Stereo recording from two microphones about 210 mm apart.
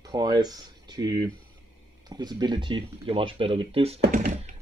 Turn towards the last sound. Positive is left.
turn(degrees=-40)  # may be behind; listen again after turning